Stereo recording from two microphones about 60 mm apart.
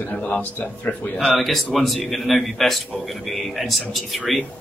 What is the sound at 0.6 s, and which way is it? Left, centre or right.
Speech, left.